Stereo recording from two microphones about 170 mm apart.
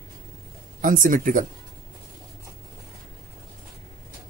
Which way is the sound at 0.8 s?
55° right (ahead or behind).